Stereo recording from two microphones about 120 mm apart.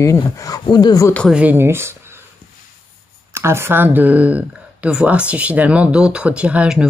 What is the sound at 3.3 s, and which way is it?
Speech, 20° right (ahead or behind).